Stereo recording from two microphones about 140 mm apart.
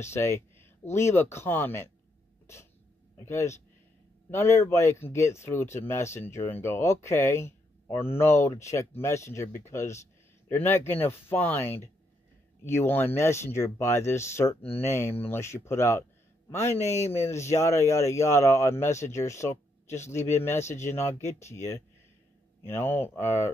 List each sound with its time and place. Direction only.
0.0 s speech: 20° left (ahead or behind)
3.2 s speech: 20° left (ahead or behind)